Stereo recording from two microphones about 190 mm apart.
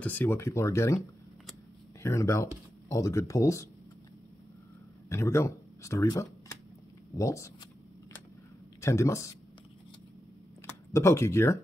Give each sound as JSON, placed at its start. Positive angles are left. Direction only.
{"t": 0.0, "sound": "speech", "side_deg": 10}
{"t": 2.0, "sound": "speech", "side_deg": 15}
{"t": 5.1, "sound": "speech", "side_deg": 15}
{"t": 8.8, "sound": "speech", "side_deg": 15}
{"t": 10.9, "sound": "speech", "side_deg": 15}